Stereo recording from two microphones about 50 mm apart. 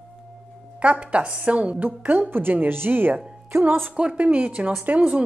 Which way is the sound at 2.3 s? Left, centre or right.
Right.